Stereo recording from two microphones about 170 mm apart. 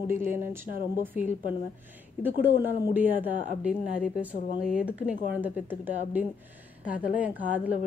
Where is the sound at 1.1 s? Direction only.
45° left (ahead or behind).